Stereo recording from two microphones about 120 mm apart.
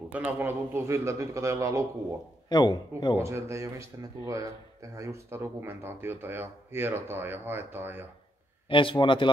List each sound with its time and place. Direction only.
0.1 s speech: 15° right (ahead or behind)
2.5 s a man's voice: 35° left (ahead or behind)
3.2 s speech: 25° right (ahead or behind)
8.6 s speech: 45° left (ahead or behind)